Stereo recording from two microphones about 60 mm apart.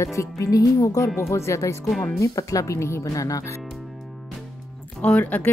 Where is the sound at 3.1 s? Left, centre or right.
Left.